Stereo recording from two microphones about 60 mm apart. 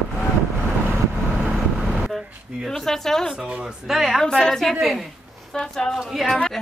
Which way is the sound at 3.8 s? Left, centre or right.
Centre.